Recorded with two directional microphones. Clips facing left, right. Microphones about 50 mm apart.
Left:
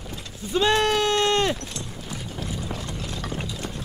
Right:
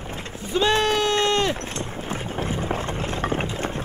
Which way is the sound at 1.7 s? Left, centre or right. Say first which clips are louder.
Right 6 dB; right.